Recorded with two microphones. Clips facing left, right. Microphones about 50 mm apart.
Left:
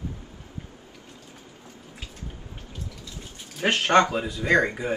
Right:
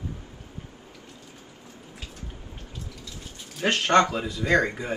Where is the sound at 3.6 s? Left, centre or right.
Centre.